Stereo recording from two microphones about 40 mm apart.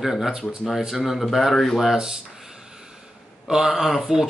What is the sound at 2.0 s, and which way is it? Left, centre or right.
Speech, centre.